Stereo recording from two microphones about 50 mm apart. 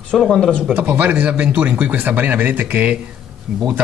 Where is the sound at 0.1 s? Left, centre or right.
Centre.